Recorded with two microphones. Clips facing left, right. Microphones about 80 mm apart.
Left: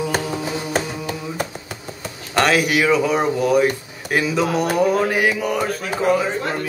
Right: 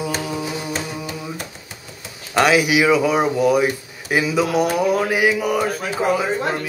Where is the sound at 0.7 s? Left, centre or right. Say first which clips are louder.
Left 3 dB; left.